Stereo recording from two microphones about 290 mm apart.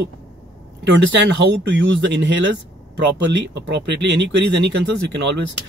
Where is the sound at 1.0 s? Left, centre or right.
Right.